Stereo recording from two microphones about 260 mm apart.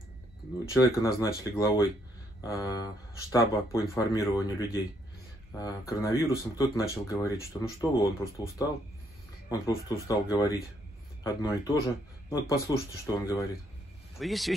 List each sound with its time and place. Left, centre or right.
0.7 s speech: centre
14.1 s speech: centre